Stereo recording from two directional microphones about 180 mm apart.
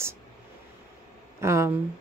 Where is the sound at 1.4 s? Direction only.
15° right (ahead or behind).